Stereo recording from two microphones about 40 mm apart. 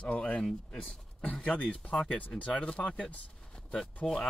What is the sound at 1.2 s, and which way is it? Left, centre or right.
Speech, left.